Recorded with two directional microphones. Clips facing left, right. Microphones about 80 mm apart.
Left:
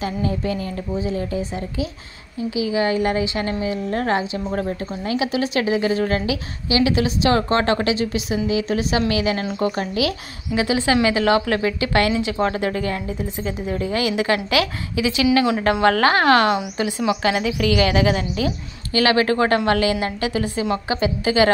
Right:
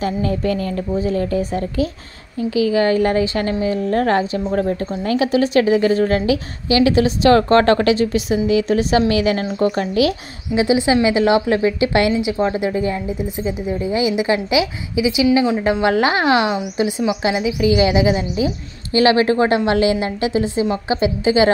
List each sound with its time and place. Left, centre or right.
0.0 s a woman's voice: right
10.5 s a woman's voice: right